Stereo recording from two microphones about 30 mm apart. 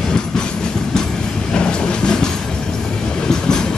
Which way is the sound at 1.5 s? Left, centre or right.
Left.